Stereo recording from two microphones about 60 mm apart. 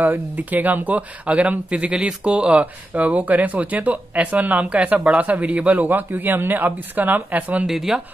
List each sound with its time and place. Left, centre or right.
0.0 s speech: right
5.9 s speech: right
7.6 s speech: centre